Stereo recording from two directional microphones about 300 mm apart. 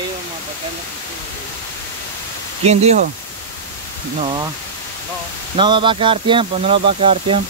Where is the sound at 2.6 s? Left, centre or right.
Right.